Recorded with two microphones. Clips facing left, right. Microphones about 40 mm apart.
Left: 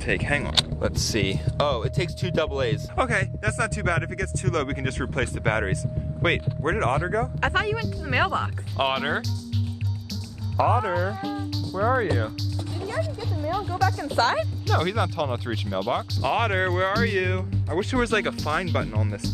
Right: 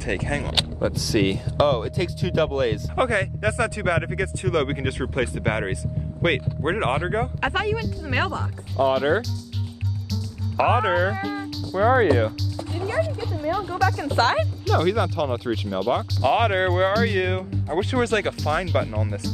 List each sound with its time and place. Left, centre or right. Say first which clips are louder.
0.1 s speech: left 2 dB; left
0.6 s speech: right 1 dB; centre
3.0 s speech: right 3 dB; centre
6.6 s speech: even; right
7.3 s speech: even; centre
10.6 s speech: right 3 dB; right
12.8 s speech: right 5 dB; right
13.3 s speech: right 2 dB; centre
13.9 s speech: right 2 dB; right
14.4 s speech: right 3 dB; centre
16.3 s speech: right 4 dB; centre